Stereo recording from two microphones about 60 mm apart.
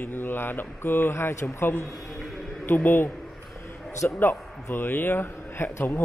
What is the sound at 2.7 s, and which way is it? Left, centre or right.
Mantra, left.